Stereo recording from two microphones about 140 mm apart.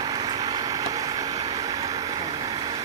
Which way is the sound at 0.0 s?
30° right (ahead or behind).